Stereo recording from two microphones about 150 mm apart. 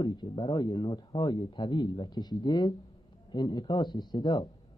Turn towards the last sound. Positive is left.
turn(degrees=25)  # may be behind; listen again after turning